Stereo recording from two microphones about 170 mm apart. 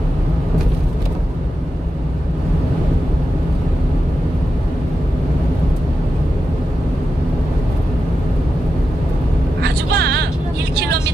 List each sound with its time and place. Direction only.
9.6 s vehicle: 75° right (ahead or behind)